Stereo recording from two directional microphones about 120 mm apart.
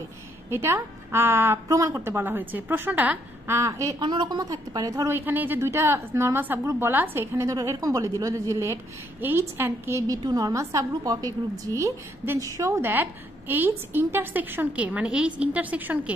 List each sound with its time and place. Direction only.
0.5 s a woman's voice: 20° right (ahead or behind)
4.0 s a woman's voice: 40° right (ahead or behind)
5.1 s a woman's voice: 15° right (ahead or behind)